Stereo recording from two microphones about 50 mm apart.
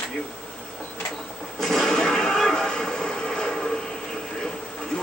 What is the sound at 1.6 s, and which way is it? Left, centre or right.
Television, centre.